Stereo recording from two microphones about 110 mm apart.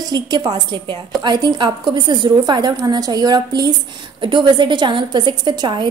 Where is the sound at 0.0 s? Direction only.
35° right (ahead or behind).